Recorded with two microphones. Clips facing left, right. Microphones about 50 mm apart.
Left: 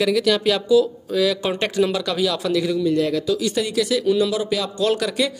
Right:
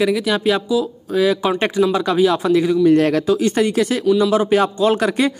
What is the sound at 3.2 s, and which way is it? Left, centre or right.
Speech, right.